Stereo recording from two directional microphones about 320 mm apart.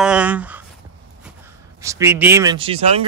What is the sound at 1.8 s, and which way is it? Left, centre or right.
Speech, centre.